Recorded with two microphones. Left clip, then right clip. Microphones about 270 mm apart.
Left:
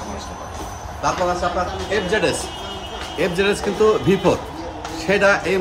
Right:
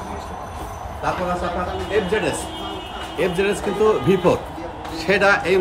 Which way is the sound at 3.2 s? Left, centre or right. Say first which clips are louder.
Left 1 dB; centre.